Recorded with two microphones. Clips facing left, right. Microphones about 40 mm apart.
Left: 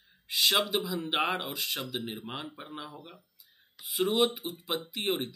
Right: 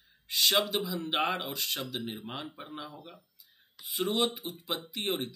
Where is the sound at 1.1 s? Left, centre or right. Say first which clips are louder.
Even; centre.